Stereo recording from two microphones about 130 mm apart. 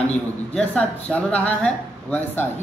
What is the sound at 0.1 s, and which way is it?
Speech, 10° left (ahead or behind).